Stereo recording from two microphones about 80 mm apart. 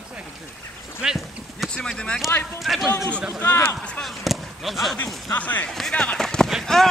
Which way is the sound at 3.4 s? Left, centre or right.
Left.